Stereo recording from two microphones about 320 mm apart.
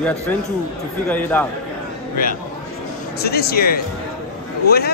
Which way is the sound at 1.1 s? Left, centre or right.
Centre.